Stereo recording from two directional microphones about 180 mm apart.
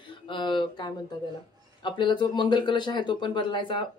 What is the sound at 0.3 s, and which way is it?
Speech, 25° left (ahead or behind).